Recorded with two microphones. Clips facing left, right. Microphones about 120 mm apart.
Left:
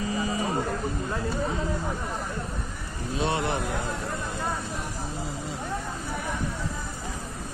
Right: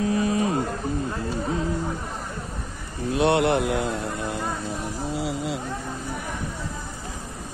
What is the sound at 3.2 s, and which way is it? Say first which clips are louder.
Speech: right 7 dB; 65° right (ahead or behind).